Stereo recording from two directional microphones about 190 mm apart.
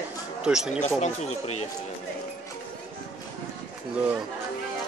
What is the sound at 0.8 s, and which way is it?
Speech, 35° left (ahead or behind).